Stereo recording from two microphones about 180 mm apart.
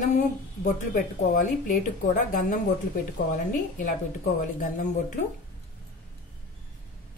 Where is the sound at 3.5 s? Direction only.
45° left (ahead or behind).